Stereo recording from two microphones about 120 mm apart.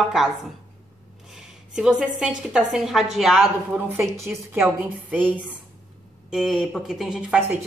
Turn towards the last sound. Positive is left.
turn(degrees=-5)  # may be behind; listen again after turning